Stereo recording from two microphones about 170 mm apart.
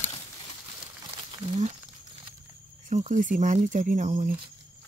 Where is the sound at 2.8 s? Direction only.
45° right (ahead or behind).